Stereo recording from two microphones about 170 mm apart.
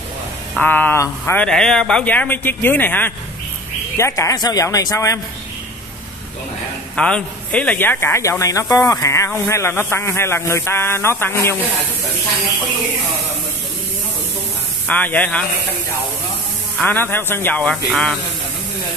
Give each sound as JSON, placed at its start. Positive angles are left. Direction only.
{"t": 0.6, "sound": "a man's voice", "side_deg": 10}
{"t": 7.0, "sound": "a man's voice", "side_deg": 5}
{"t": 14.9, "sound": "a man's voice", "side_deg": 10}
{"t": 16.7, "sound": "a man's voice", "side_deg": 10}